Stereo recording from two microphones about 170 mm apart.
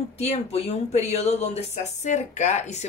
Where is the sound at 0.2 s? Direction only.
40° left (ahead or behind).